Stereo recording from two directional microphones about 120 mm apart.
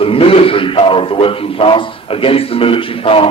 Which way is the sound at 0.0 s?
50° left (ahead or behind).